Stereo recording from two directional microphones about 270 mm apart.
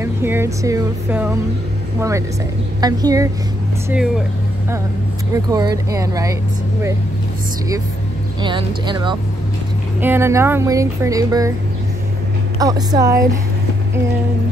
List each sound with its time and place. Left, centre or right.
0.0 s speech: centre
5.5 s speech: centre
8.4 s speech: centre
12.5 s speech: centre